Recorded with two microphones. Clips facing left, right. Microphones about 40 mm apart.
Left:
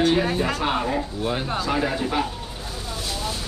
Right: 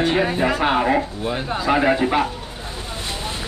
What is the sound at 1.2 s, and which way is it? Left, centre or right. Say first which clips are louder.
Speech: right 1 dB; centre.